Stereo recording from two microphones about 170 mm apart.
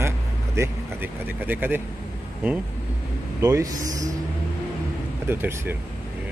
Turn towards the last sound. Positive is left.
turn(degrees=-15)  # may be behind; listen again after turning